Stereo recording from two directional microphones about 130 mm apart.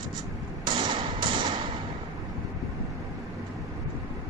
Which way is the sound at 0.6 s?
40° right (ahead or behind).